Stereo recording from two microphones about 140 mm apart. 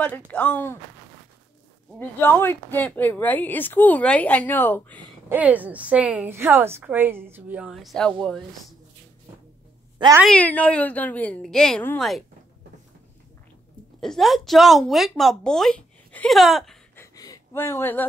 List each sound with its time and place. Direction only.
0.3 s a woman's voice: 10° left (ahead or behind)
2.0 s a woman's voice: 15° left (ahead or behind)
5.3 s a woman's voice: 10° right (ahead or behind)
10.2 s a woman's voice: 10° left (ahead or behind)
14.0 s a woman's voice: centre (ahead or behind)
16.9 s a sound: 20° left (ahead or behind)